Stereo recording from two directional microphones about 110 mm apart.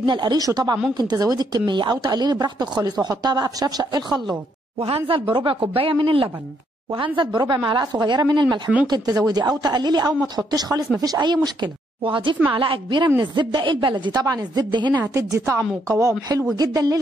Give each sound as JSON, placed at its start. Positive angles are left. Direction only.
{"t": 0.0, "sound": "speech", "side_deg": -45}
{"t": 4.7, "sound": "a woman's voice", "side_deg": -60}
{"t": 15.0, "sound": "a woman's voice", "side_deg": -25}